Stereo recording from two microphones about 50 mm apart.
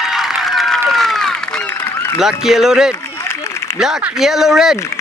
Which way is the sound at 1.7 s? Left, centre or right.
Left.